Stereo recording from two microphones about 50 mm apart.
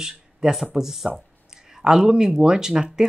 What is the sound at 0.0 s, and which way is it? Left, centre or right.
Speech, centre.